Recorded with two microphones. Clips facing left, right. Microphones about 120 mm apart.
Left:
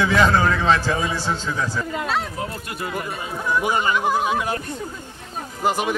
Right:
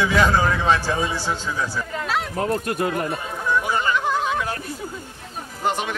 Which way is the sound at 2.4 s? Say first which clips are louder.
Right 7 dB; 45° right (ahead or behind).